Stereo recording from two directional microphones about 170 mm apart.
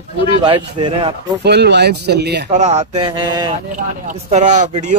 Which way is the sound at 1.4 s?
80° right.